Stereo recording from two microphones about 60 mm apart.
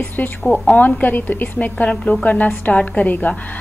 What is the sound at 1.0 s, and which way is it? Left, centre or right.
A woman's voice, left.